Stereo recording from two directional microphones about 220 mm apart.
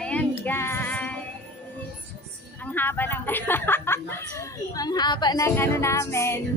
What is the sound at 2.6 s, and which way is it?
Speech, 10° left (ahead or behind).